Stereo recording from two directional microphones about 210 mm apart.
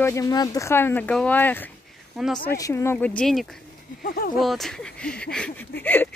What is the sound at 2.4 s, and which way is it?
Speech, 15° left (ahead or behind).